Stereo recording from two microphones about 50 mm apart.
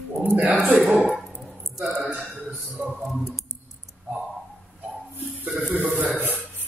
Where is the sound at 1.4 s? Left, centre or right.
Centre.